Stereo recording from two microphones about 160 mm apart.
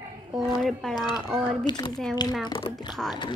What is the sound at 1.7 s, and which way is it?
Speech, 25° left (ahead or behind).